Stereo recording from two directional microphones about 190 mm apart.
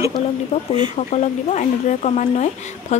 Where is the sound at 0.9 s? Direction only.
40° left (ahead or behind).